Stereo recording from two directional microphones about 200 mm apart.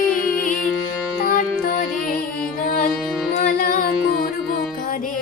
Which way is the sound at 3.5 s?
45° left (ahead or behind).